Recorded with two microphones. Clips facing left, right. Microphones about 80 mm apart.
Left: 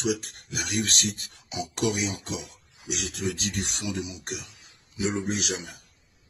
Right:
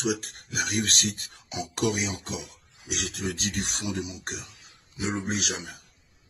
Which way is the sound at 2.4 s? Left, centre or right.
Centre.